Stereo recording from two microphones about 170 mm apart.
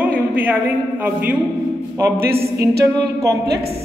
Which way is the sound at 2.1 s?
65° right (ahead or behind).